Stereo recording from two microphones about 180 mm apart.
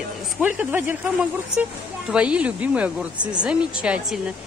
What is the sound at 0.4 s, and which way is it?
A woman's voice, 10° right (ahead or behind).